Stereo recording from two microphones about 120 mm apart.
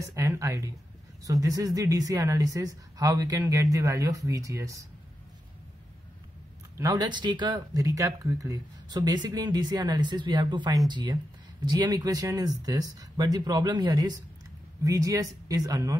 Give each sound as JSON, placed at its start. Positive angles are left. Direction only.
{"t": 0.0, "sound": "speech", "side_deg": -25}
{"t": 6.8, "sound": "speech", "side_deg": -35}